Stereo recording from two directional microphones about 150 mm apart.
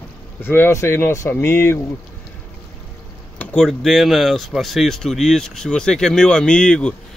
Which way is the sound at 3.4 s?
5° left (ahead or behind).